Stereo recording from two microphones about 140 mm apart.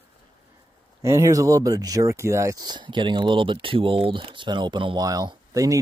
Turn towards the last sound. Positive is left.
turn(degrees=-25)  # may be behind; listen again after turning